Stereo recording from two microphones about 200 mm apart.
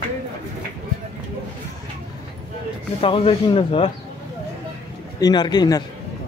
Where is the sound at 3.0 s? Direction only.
25° left (ahead or behind).